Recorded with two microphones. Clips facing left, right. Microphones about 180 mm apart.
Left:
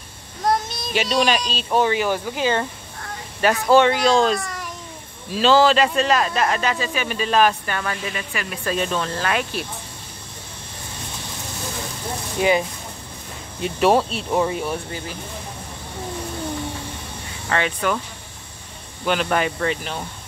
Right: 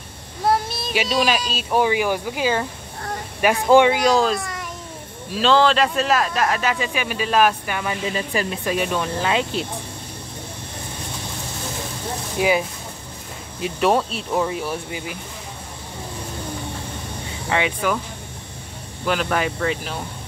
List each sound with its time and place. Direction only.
0.5 s speech: 5° right (ahead or behind)
3.6 s speech: 15° right (ahead or behind)
8.1 s speech: 30° right (ahead or behind)
8.6 s speech: 10° right (ahead or behind)
12.4 s speech: 5° right (ahead or behind)
14.9 s speech: 10° right (ahead or behind)
17.5 s speech: 10° right (ahead or behind)
19.0 s speech: centre (ahead or behind)